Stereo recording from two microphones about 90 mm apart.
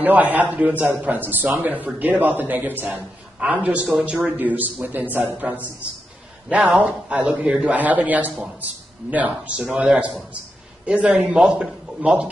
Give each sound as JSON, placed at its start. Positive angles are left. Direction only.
{"t": 0.0, "sound": "a man's voice", "side_deg": -20}
{"t": 6.7, "sound": "a man's voice", "side_deg": -5}
{"t": 9.8, "sound": "a man's voice", "side_deg": -5}
{"t": 10.9, "sound": "a man's voice", "side_deg": -15}